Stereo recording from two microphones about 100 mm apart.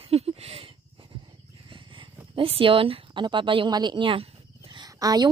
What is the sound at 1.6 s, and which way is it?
Purr, 55° right (ahead or behind).